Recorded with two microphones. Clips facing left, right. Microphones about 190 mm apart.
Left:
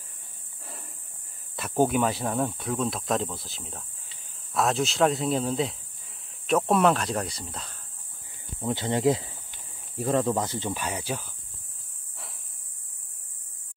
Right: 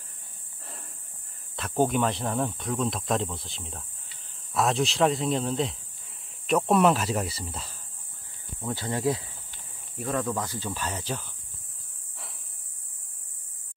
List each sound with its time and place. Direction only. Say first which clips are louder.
1.6 s speech: left 1 dB; 5° left (ahead or behind)
8.5 s speech: left 4 dB; 20° left (ahead or behind)